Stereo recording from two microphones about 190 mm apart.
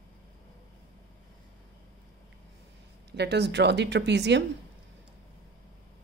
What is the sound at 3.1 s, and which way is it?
A woman's voice, 60° right (ahead or behind).